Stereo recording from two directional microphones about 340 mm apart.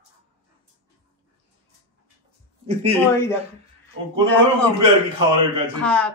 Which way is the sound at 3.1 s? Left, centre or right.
Centre.